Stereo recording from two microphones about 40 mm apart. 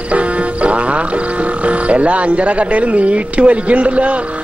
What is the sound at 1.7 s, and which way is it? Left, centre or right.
Speech, right.